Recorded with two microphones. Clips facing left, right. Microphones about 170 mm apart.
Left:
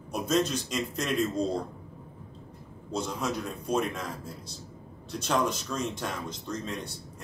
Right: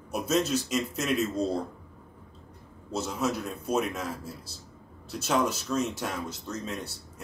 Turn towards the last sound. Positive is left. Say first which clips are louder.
# even
turn(degrees=-5)  # may be behind; listen again after turning